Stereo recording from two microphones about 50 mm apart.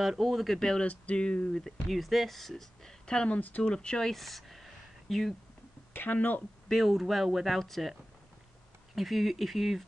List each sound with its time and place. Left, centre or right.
0.2 s speech: centre
0.6 s speech: centre
0.8 s a sound: left
1.6 s speech: centre
3.3 s speech: left
3.6 s speech: centre
4.1 s a sound: centre
5.9 s speech: left
6.7 s speech: centre
8.9 s speech: centre